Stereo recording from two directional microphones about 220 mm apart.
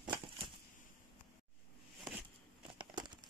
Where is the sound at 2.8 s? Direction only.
20° right (ahead or behind).